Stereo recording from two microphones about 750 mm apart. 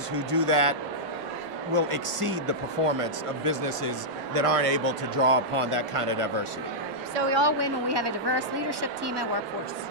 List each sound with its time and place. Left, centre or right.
0.1 s a woman's voice: right